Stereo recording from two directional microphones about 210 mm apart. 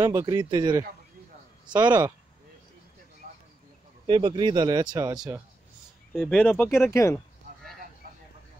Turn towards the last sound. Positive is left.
turn(degrees=15)  # may be behind; listen again after turning